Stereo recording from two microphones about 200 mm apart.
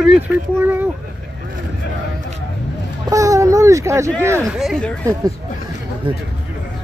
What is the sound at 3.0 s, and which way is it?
Speech, 15° right (ahead or behind).